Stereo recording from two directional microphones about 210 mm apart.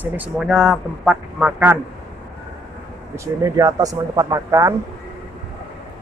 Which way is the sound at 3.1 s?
15° right (ahead or behind).